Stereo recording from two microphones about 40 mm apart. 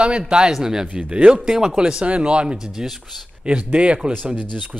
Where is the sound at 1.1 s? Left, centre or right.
Right.